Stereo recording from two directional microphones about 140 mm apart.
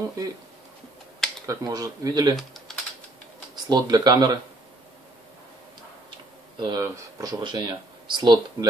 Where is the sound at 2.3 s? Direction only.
Centre (ahead or behind).